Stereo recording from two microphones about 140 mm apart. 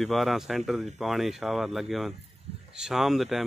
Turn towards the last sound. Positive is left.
turn(degrees=0)  # may be behind; listen again after turning